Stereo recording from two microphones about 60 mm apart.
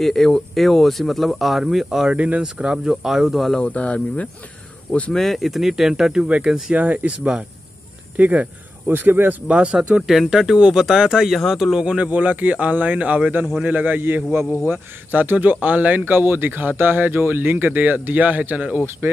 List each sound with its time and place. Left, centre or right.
0.0 s speech: centre
2.1 s speech: right; by 3.5 s centre
3.6 s speech: left
5.1 s speech: centre; by 9.4 s right
9.5 s speech: centre
10.0 s speech: centre
11.8 s speech: centre